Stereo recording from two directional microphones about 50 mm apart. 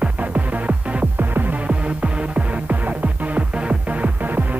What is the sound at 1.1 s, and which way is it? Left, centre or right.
Music, right.